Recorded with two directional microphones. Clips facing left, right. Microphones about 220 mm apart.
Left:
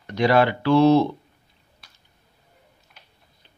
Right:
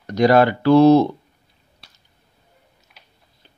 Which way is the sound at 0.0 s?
40° right (ahead or behind).